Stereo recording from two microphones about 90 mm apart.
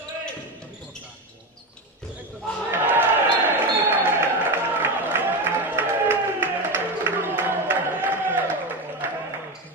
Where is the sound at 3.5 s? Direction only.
20° right (ahead or behind).